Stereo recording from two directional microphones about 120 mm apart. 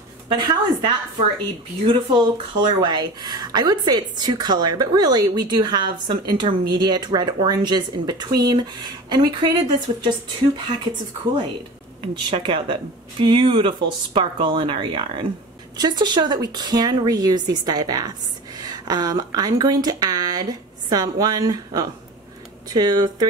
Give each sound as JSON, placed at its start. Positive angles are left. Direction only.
{"t": 0.3, "sound": "speech", "side_deg": -35}
{"t": 12.0, "sound": "speech", "side_deg": -45}
{"t": 18.6, "sound": "a sound", "side_deg": -35}
{"t": 20.9, "sound": "speech", "side_deg": -30}